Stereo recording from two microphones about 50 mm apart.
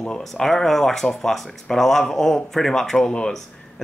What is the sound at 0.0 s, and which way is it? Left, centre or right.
Speech, centre.